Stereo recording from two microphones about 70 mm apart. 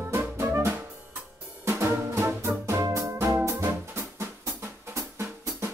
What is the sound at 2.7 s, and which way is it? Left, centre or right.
Music, right.